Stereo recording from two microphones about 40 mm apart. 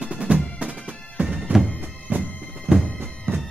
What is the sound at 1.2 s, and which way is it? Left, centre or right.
Bagpipes, right.